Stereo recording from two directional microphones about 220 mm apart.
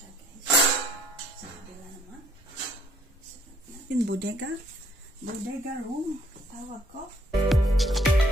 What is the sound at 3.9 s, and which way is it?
Speech, 55° right (ahead or behind).